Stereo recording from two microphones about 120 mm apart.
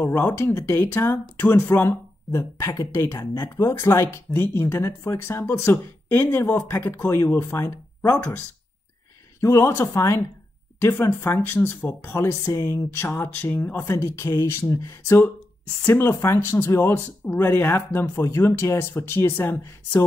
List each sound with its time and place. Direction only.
0.0 s speech: 15° left (ahead or behind)
9.4 s speech: 25° left (ahead or behind)